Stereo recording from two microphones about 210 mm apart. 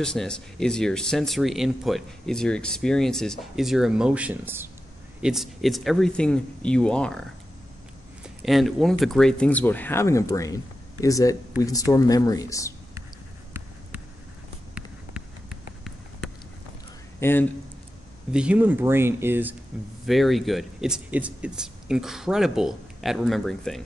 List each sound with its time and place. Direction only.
0.0 s speech: 5° left (ahead or behind)
17.2 s speech: 10° left (ahead or behind)
18.3 s speech: 5° right (ahead or behind)